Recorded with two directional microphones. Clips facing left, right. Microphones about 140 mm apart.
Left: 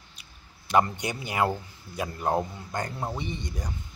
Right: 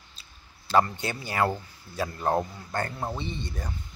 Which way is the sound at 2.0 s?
15° left (ahead or behind).